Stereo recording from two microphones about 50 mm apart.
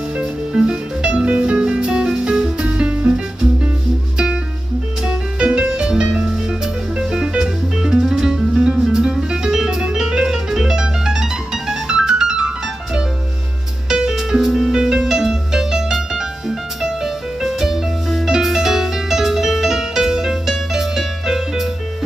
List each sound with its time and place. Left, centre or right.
0.2 s music: centre
5.0 s music: centre